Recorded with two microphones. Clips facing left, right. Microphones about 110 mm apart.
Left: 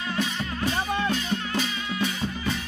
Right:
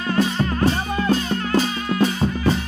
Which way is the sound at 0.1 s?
55° right (ahead or behind).